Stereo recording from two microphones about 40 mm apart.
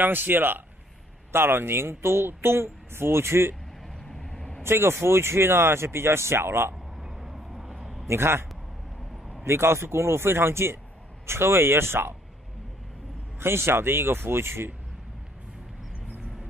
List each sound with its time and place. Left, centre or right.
0.0 s speech: right
1.3 s speech: right
3.8 s vehicle: centre
4.6 s speech: right
7.0 s vehicle: centre
8.1 s speech: right
13.4 s speech: right